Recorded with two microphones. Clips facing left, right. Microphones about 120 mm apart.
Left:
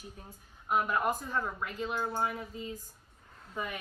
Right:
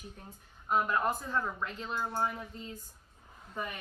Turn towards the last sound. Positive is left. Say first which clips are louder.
# left 1 dB
turn(degrees=0)  # may be behind; listen again after turning